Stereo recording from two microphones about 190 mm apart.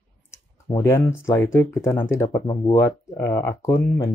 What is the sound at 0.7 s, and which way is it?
Speech, 15° left (ahead or behind).